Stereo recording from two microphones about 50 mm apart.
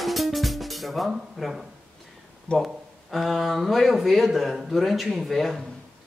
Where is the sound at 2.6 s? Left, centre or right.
Centre.